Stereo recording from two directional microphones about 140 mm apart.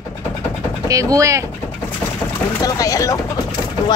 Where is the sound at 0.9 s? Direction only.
25° right (ahead or behind).